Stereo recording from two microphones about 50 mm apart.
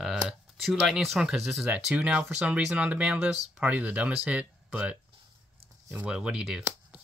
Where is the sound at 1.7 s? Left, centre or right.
Right.